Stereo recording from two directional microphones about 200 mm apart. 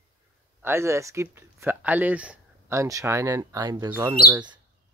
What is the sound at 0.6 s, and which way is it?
Speech, 15° right (ahead or behind).